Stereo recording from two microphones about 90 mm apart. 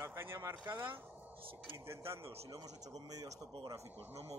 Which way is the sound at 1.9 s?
30° right (ahead or behind).